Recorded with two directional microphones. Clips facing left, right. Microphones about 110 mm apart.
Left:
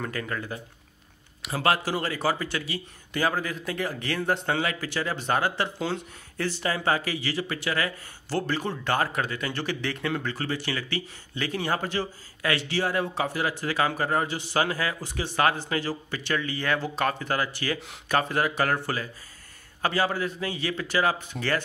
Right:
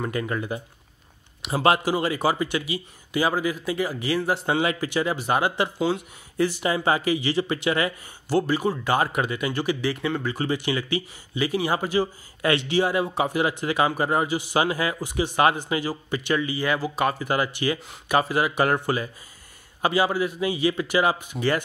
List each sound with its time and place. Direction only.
0.0 s speech: 20° right (ahead or behind)
4.5 s speech: 15° right (ahead or behind)
10.3 s speech: 15° right (ahead or behind)
12.4 s speech: 25° right (ahead or behind)